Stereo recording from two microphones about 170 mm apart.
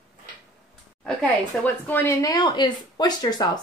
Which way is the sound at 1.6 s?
15° left (ahead or behind).